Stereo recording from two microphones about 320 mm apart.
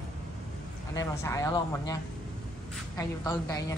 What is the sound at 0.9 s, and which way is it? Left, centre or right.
A woman's voice, centre.